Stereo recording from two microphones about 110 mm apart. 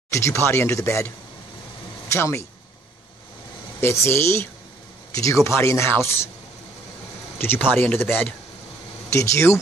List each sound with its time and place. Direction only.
0.1 s speech: 25° left (ahead or behind)
2.1 s speech: 25° left (ahead or behind)
3.8 s speech: 25° left (ahead or behind)
7.3 s speech: 20° left (ahead or behind)